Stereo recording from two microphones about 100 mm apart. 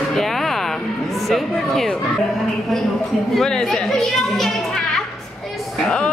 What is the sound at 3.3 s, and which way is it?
A woman's voice, 5° left (ahead or behind).